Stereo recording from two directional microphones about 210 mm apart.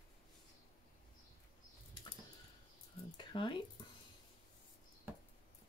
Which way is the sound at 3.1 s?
20° left (ahead or behind).